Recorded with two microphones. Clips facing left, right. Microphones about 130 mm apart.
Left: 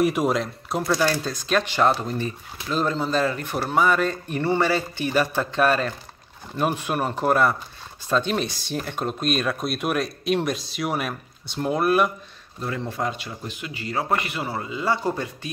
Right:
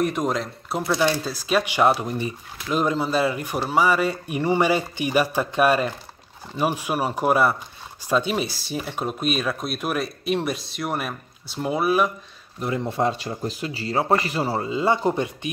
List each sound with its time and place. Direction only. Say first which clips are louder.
0.0 s speech: left 2 dB; 5° left (ahead or behind)
12.5 s speech: right 4 dB; 20° right (ahead or behind)